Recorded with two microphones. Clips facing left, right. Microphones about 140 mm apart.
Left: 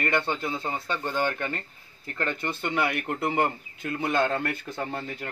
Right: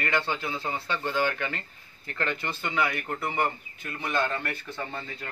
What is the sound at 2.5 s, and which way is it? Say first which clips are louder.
Speech: left 2 dB; 55° left (ahead or behind).